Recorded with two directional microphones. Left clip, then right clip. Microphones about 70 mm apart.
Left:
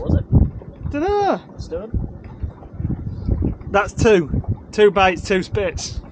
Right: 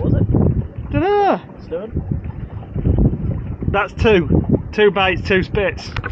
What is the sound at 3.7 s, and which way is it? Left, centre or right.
Speech, left.